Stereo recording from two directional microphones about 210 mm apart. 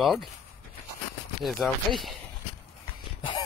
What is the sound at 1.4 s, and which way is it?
Speech, 5° left (ahead or behind).